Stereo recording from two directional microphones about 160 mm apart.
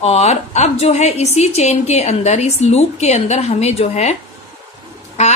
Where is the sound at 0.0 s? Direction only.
40° left (ahead or behind).